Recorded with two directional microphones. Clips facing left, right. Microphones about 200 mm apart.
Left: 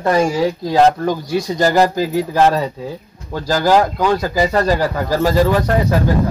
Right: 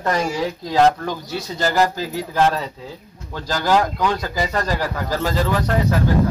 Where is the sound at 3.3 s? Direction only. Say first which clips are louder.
Left 5 dB; 10° left (ahead or behind).